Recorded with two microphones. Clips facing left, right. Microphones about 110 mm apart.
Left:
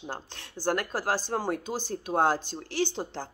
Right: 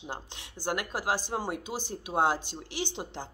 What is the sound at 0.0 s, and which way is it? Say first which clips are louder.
Speech: left 2 dB; 15° right (ahead or behind).